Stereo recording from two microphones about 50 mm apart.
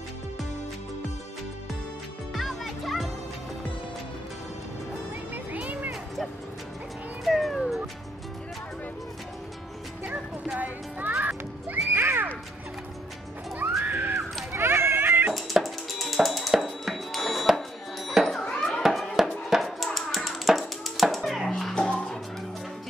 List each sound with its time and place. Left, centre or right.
2.3 s music: centre
5.3 s music: right
7.2 s cat: centre
7.5 s music: centre
10.0 s music: right
11.7 s neigh: right
13.6 s music: right
14.5 s a sound: right
15.6 s music: centre
18.1 s a sound: centre
21.5 s music: centre